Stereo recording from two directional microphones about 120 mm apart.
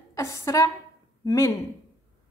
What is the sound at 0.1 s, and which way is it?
A woman's voice, 25° left (ahead or behind).